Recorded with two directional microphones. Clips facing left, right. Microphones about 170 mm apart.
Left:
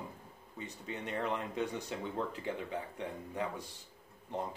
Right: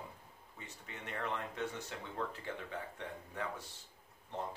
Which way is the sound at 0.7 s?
20° left (ahead or behind).